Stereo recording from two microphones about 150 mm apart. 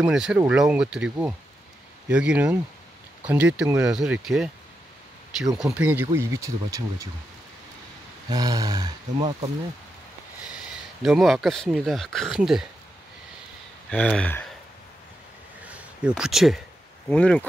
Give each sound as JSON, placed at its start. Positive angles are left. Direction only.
{"t": 0.0, "sound": "speech", "side_deg": -5}
{"t": 5.6, "sound": "speech", "side_deg": -5}
{"t": 8.3, "sound": "speech", "side_deg": -25}
{"t": 10.4, "sound": "speech", "side_deg": -5}
{"t": 13.8, "sound": "speech", "side_deg": 5}
{"t": 15.6, "sound": "a sound", "side_deg": -10}
{"t": 17.1, "sound": "speech", "side_deg": 5}